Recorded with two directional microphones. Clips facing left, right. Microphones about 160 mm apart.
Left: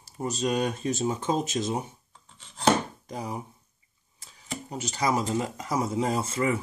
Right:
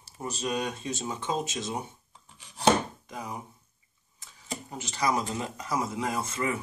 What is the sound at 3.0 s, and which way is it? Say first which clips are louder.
Speech: left 4 dB; 35° left (ahead or behind).